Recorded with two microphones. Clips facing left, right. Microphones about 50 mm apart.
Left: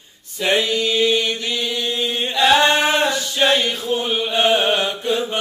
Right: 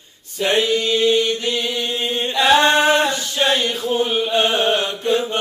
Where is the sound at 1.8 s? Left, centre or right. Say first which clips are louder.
Even; right.